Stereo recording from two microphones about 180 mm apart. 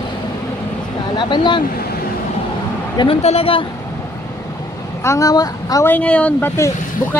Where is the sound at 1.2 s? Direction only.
25° left (ahead or behind).